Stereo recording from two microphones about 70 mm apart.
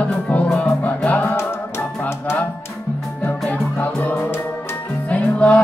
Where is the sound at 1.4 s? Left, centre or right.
Left.